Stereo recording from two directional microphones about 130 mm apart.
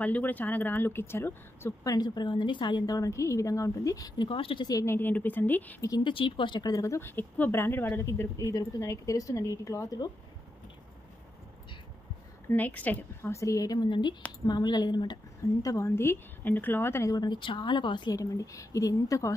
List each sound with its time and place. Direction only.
0.0 s speech: 10° left (ahead or behind)
2.0 s speech: 35° left (ahead or behind)
4.3 s speech: 40° left (ahead or behind)
4.6 s speech: 25° left (ahead or behind)
5.9 s speech: 35° left (ahead or behind)
12.4 s speech: 15° left (ahead or behind); by 15.1 s 35° left (ahead or behind)
15.6 s speech: 25° left (ahead or behind)